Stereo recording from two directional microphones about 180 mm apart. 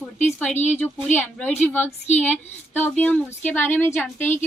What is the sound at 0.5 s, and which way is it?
Speech, 40° left (ahead or behind).